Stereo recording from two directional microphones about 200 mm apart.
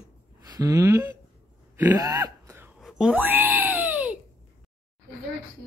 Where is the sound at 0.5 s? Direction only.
15° right (ahead or behind).